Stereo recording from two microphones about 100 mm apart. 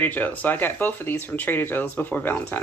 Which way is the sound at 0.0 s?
15° left (ahead or behind).